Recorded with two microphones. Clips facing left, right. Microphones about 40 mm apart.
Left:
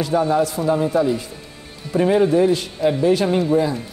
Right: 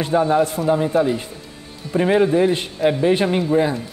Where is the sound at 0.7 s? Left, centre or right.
Right.